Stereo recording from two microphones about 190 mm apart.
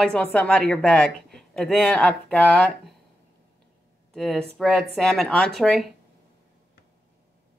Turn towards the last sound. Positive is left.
turn(degrees=0)  # may be behind; listen again after turning